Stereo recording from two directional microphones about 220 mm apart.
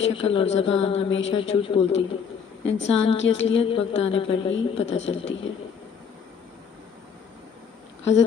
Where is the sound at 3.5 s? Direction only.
25° left (ahead or behind).